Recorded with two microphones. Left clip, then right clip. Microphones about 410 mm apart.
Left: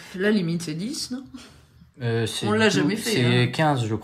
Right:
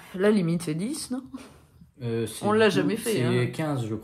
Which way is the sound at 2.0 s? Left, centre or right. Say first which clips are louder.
Left 4 dB; left.